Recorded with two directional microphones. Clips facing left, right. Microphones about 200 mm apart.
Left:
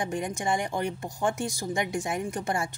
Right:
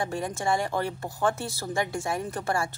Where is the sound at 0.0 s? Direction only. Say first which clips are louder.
Right 1 dB; 15° left (ahead or behind).